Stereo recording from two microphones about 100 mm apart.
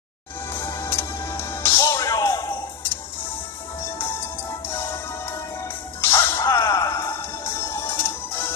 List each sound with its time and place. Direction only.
0.5 s music: 25° left (ahead or behind)
5.9 s music: 25° left (ahead or behind)